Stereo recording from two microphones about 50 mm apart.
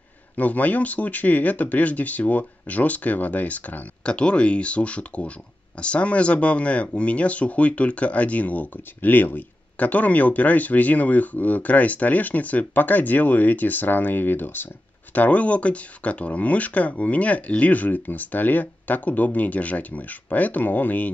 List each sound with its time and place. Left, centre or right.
0.4 s speech: left
4.0 s speech: left
15.1 s speech: left